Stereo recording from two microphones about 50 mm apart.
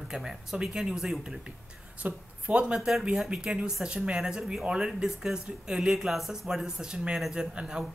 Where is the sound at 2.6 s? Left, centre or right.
Centre.